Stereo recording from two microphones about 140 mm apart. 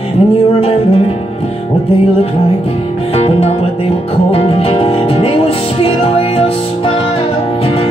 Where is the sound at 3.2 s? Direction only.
45° left (ahead or behind).